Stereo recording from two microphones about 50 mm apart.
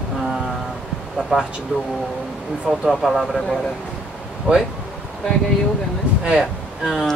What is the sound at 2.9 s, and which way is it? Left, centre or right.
Speech, centre.